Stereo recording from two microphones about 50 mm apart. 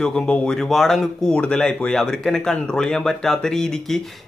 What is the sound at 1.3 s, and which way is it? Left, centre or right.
Speech, left.